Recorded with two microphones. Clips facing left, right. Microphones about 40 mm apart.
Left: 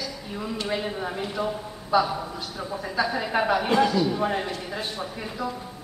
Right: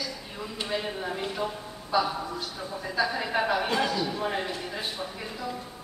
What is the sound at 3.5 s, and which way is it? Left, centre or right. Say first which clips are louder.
Speech: left 5 dB; centre.